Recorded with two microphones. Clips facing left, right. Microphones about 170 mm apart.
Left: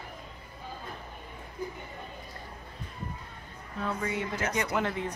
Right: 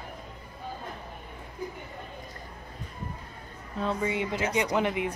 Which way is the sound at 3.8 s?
25° right (ahead or behind).